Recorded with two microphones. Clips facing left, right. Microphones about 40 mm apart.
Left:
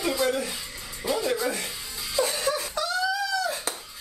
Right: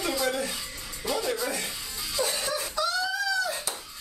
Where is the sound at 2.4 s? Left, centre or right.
Centre.